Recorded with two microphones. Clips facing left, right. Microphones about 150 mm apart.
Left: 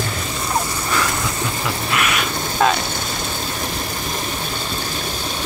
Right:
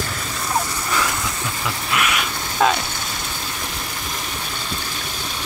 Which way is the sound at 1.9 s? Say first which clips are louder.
Even; 5° right (ahead or behind).